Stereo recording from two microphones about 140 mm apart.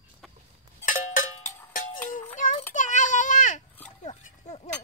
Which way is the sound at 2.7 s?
65° left (ahead or behind).